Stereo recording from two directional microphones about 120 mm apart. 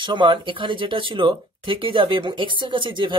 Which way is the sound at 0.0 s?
40° right (ahead or behind).